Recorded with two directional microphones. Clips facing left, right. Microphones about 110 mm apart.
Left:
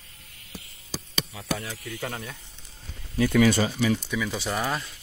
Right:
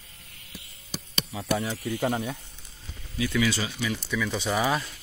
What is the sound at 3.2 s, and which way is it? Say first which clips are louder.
Speech: left 6 dB; 50° left (ahead or behind).